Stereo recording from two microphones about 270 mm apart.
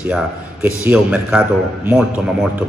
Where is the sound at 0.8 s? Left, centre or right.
Centre.